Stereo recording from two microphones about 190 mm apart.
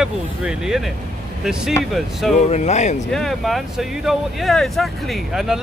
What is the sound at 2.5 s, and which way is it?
Speech, 35° left (ahead or behind).